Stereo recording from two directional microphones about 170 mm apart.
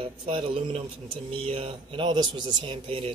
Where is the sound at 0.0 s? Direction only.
30° right (ahead or behind).